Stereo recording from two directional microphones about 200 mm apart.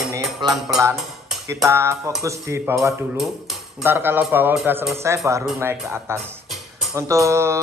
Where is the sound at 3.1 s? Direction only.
Centre (ahead or behind).